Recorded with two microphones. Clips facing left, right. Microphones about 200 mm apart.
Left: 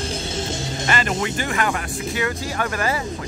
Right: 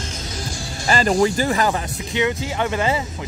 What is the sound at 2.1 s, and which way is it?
Speech, 20° right (ahead or behind).